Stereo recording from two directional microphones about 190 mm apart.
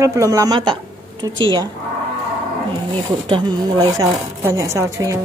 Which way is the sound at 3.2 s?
25° right (ahead or behind).